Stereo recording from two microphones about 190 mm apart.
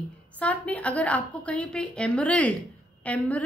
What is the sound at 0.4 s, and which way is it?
A woman's voice, 5° left (ahead or behind).